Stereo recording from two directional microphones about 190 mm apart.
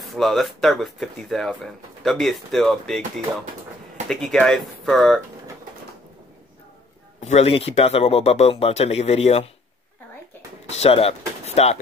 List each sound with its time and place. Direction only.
0.0 s speech: centre (ahead or behind)
4.1 s speech: centre (ahead or behind)
7.2 s speech: 35° left (ahead or behind)
10.8 s speech: 30° left (ahead or behind)